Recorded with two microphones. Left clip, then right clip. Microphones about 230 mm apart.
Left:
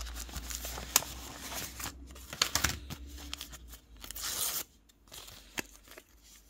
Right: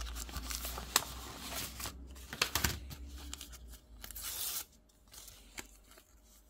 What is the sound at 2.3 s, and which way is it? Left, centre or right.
Tearing, centre.